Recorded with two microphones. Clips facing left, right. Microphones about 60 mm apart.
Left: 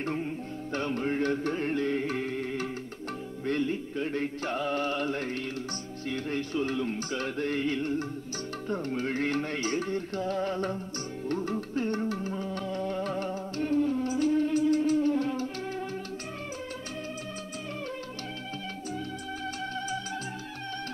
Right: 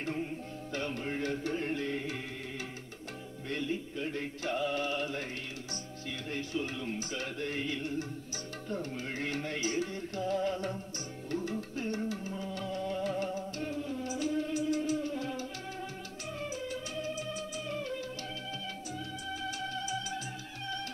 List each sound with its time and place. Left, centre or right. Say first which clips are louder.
0.0 s music: left 4 dB; left
19.7 s music: left 3 dB; left